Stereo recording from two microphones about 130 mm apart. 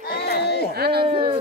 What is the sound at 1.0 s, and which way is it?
Speech, 45° right (ahead or behind).